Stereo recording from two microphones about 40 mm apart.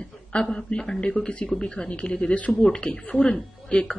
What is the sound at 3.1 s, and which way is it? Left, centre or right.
Speech, centre.